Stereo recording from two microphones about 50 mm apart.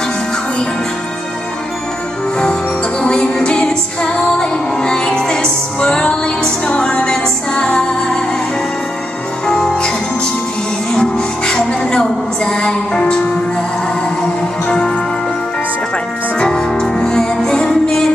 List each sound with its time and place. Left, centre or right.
3.0 s music: centre
9.5 s music: centre
14.7 s music: centre
16.3 s music: centre